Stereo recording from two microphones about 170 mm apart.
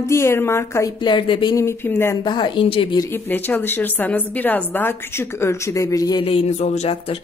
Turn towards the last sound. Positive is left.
turn(degrees=40)  # may be behind; listen again after turning